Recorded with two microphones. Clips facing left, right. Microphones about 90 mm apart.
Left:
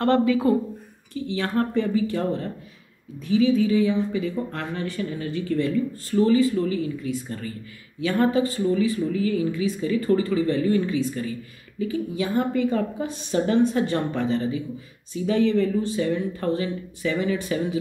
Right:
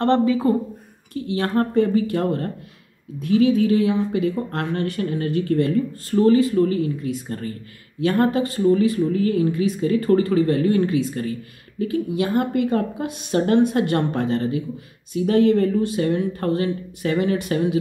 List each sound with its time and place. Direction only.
0.0 s speech: 30° right (ahead or behind)
1.1 s speech: 50° right (ahead or behind); by 17.7 s 65° right (ahead or behind)